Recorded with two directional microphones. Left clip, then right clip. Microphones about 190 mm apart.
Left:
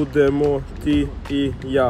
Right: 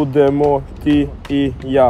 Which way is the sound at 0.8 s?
20° right (ahead or behind).